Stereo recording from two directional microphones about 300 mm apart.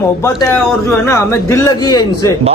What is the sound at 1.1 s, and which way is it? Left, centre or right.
Speech, centre.